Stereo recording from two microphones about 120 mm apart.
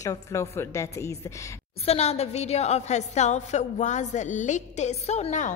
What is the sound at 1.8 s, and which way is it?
A woman's voice, 60° left (ahead or behind).